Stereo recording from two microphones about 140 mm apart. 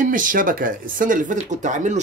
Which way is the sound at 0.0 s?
75° right (ahead or behind).